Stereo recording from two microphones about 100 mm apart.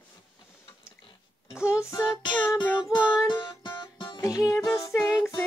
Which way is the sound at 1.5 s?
10° right (ahead or behind).